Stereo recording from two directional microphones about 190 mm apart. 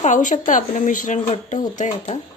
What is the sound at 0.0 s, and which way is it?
A woman's voice, 40° left (ahead or behind).